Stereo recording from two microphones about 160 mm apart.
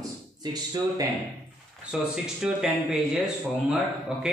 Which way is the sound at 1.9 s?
5° right (ahead or behind).